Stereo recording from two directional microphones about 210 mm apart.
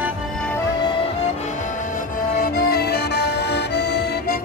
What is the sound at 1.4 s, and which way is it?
Music, 35° left (ahead or behind).